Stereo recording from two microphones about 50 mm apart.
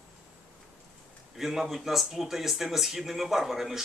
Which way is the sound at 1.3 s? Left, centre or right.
Centre.